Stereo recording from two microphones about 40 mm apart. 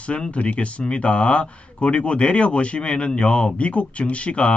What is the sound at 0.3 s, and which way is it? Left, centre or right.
Speech, left.